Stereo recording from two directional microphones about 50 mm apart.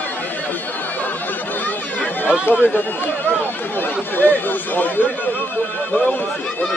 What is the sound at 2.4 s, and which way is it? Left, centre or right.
Speech, left.